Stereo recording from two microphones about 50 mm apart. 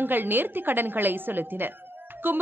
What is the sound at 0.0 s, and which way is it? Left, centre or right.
A woman's voice, right.